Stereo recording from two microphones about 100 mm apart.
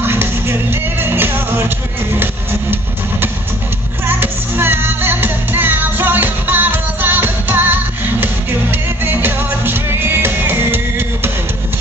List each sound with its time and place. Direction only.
0.0 s music: 20° right (ahead or behind)
4.1 s music: 20° right (ahead or behind)